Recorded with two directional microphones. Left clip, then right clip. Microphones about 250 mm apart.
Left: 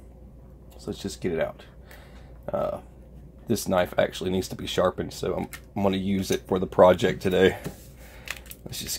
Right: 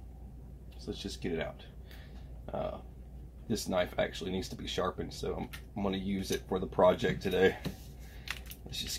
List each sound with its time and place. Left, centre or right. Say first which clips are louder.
0.8 s speech: left 8 dB; left
2.4 s burping: left 10 dB; left
3.4 s speech: left 8 dB; left